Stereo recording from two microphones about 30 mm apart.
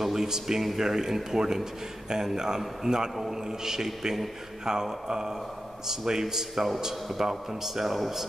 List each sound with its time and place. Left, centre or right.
0.0 s a man's voice: centre